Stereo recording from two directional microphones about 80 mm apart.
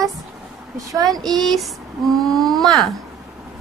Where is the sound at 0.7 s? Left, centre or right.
Right.